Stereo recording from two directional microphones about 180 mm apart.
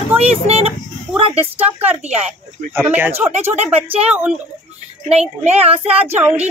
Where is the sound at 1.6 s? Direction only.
10° right (ahead or behind).